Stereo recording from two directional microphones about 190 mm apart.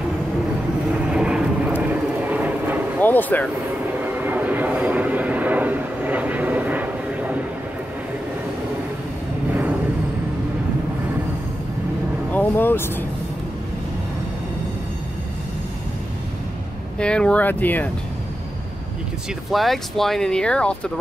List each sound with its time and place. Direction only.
1.1 s vehicle: 5° right (ahead or behind)
3.0 s vehicle: 10° left (ahead or behind)
4.0 s vehicle: 10° right (ahead or behind)
9.5 s a sound: 10° right (ahead or behind)
12.3 s vehicle: 10° left (ahead or behind)
17.0 s speech: 5° left (ahead or behind)
19.5 s speech: centre (ahead or behind)